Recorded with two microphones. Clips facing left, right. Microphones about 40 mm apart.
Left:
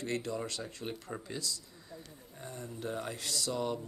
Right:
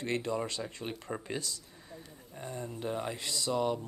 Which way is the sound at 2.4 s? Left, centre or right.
Right.